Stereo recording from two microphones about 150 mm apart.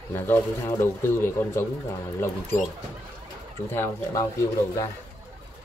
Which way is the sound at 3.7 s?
20° left (ahead or behind).